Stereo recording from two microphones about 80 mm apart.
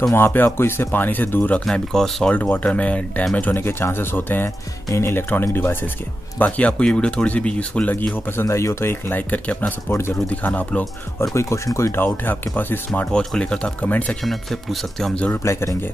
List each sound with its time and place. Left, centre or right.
0.1 s speech: left
1.7 s speech: centre
2.5 s speech: centre; by 5.2 s left
5.3 s speech: left
8.4 s speech: left
9.3 s speech: left
11.3 s speech: left; by 13.2 s centre
13.2 s speech: centre
13.8 s speech: centre
14.2 s speech: centre
15.3 s speech: left